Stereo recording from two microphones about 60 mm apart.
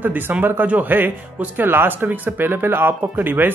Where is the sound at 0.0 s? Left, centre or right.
Right.